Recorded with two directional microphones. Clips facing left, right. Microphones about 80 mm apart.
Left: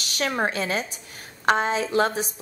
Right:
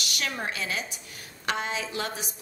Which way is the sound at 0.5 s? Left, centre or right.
Left.